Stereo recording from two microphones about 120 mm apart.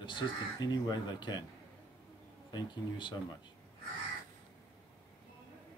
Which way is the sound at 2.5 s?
40° left (ahead or behind).